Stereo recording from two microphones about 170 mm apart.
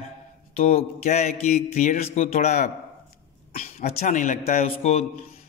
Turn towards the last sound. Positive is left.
turn(degrees=40)  # may be behind; listen again after turning